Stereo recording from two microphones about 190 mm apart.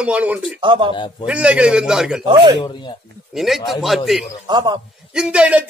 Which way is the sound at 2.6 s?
25° left (ahead or behind).